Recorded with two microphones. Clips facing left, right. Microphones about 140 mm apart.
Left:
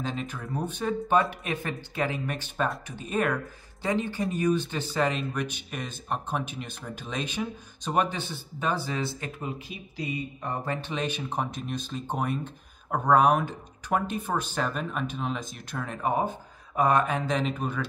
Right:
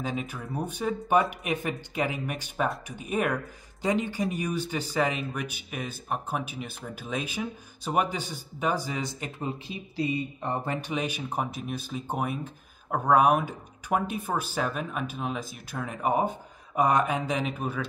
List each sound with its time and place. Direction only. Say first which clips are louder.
0.0 s speech: even; 10° right (ahead or behind)
9.4 s speech: right 2 dB; 30° right (ahead or behind)
10.8 s speech: even; 10° right (ahead or behind)